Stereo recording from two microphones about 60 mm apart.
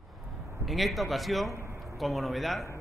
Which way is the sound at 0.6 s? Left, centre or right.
Centre.